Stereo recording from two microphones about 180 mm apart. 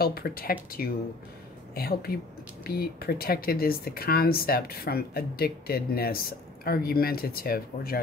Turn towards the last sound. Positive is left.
turn(degrees=55)  # may be behind; listen again after turning